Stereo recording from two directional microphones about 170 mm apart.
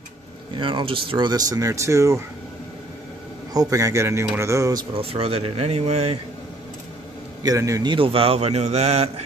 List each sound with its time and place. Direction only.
0.6 s speech: 30° right (ahead or behind)
3.5 s speech: 20° right (ahead or behind)
4.9 s a man's voice: 35° right (ahead or behind)
7.4 s a man's voice: 20° right (ahead or behind); by 9.2 s 40° right (ahead or behind)